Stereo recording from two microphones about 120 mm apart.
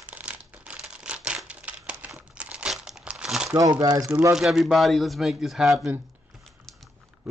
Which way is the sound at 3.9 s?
25° right (ahead or behind).